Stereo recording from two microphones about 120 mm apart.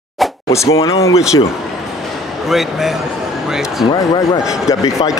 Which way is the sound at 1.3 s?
35° left (ahead or behind).